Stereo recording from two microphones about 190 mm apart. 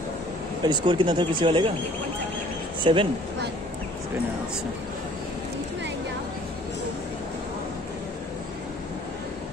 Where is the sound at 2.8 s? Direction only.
25° right (ahead or behind).